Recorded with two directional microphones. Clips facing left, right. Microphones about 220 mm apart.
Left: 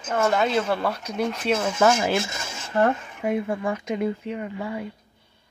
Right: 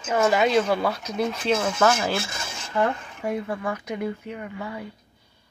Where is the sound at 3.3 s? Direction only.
25° left (ahead or behind).